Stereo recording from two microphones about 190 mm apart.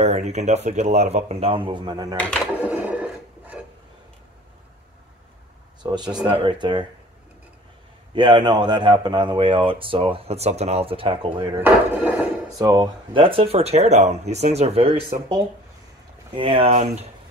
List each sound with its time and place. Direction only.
0.0 s speech: 35° right (ahead or behind); by 2.1 s 20° right (ahead or behind)
2.6 s a sound: 10° right (ahead or behind)
5.8 s a man's voice: 20° right (ahead or behind)
8.1 s a man's voice: 25° right (ahead or behind)
11.6 s a sound: 10° right (ahead or behind)
12.5 s speech: 20° right (ahead or behind)
16.3 s speech: 30° right (ahead or behind)